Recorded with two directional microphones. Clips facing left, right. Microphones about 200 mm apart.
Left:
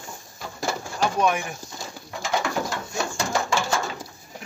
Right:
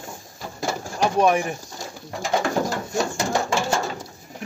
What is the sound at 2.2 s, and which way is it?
Bird, 40° right (ahead or behind).